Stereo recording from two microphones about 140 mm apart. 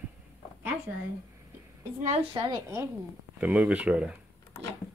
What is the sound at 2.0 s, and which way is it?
Speech, 45° right (ahead or behind).